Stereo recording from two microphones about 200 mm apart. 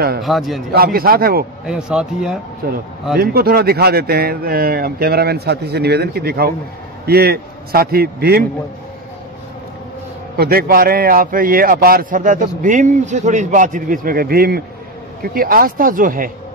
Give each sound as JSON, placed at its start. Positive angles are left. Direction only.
{"t": 0.2, "sound": "speech", "side_deg": 0}
{"t": 0.7, "sound": "speech", "side_deg": -50}
{"t": 1.7, "sound": "speech", "side_deg": -5}
{"t": 2.6, "sound": "speech", "side_deg": -50}
{"t": 10.3, "sound": "speech", "side_deg": -50}